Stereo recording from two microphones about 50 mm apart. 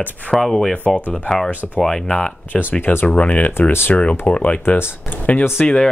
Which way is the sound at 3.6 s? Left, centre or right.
Left.